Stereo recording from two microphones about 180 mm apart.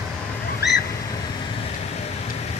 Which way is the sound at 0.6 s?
65° left (ahead or behind).